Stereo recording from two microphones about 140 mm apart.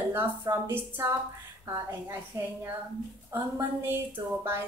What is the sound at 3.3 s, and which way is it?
A woman's voice, 15° right (ahead or behind).